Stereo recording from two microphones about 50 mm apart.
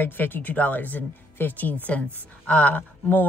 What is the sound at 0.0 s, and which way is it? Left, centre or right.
Speech, left.